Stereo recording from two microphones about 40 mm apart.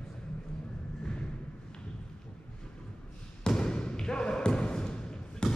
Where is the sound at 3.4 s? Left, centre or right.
Centre.